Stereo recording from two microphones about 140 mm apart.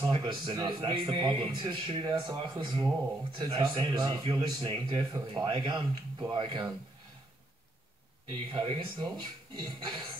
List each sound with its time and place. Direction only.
0.0 s a man's voice: 35° right (ahead or behind)
8.3 s a man's voice: 35° right (ahead or behind)